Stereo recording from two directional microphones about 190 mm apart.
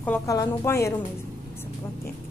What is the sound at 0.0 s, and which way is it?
Speech, 15° left (ahead or behind).